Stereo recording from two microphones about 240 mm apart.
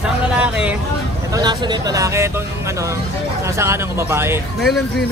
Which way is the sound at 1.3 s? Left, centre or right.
Centre.